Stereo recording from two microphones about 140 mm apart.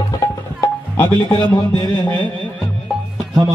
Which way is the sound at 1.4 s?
30° left (ahead or behind).